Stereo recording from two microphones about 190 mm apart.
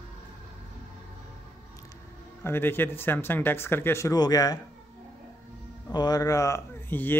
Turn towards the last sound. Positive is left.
turn(degrees=10)  # may be behind; listen again after turning